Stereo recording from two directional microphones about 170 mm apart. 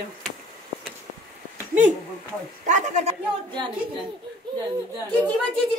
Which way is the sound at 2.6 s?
45° right (ahead or behind).